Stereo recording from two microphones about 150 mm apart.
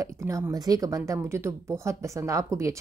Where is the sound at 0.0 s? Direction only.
20° right (ahead or behind).